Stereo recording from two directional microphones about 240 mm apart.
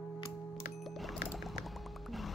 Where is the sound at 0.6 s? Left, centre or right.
Centre.